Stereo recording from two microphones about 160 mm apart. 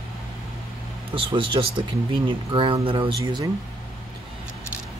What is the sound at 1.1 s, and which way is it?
Speech, 35° right (ahead or behind).